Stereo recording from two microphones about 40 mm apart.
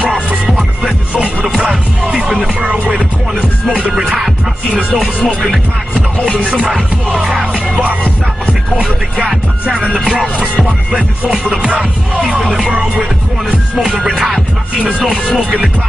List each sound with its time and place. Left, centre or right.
1.6 s music: right
4.9 s music: centre
6.4 s music: right
11.0 s music: right
13.8 s music: centre